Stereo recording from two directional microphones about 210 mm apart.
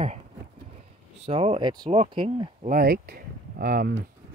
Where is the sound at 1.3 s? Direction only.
25° right (ahead or behind).